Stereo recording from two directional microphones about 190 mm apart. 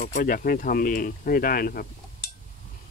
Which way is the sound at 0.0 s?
45° left (ahead or behind).